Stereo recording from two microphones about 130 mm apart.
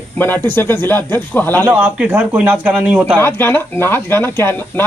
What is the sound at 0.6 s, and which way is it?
Speech, 15° left (ahead or behind).